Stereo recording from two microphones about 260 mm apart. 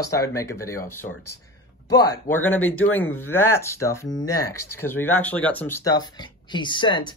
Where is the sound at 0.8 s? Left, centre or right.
Left.